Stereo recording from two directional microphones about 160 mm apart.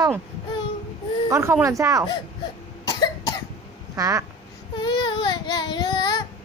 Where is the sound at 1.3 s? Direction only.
15° right (ahead or behind).